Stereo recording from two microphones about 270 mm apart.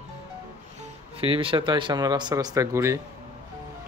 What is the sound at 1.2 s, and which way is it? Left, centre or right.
Speech, centre.